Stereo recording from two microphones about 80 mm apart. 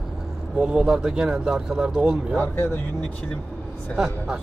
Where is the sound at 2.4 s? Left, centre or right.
Left.